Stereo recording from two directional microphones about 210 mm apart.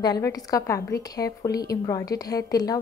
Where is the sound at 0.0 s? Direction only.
20° left (ahead or behind).